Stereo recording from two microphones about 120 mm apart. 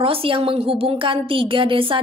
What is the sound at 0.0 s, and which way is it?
A woman's voice, 50° right (ahead or behind).